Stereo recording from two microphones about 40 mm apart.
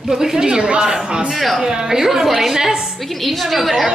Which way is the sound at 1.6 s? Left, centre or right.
Centre.